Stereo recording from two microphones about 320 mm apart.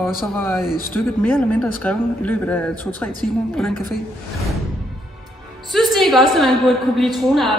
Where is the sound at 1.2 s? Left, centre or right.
Centre.